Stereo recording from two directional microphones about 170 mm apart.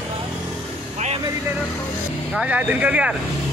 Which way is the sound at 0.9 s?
40° right (ahead or behind).